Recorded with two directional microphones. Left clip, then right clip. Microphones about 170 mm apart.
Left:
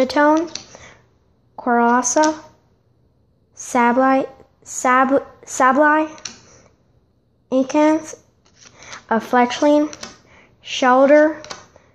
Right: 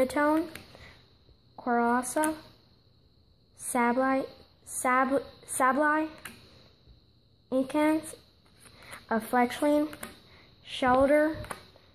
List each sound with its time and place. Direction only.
0.0 s speech: 35° left (ahead or behind)
0.5 s a sound: 15° left (ahead or behind)
1.6 s speech: 35° left (ahead or behind)
3.5 s speech: 30° left (ahead or behind)
7.4 s speech: 30° left (ahead or behind)